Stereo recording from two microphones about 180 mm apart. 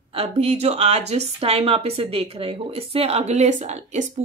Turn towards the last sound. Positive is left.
turn(degrees=-40)  # may be behind; listen again after turning